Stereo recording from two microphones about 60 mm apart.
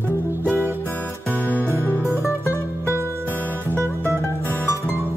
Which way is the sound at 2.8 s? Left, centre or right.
Right.